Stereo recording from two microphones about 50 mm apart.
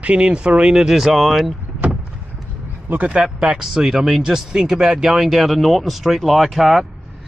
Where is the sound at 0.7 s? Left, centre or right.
Centre.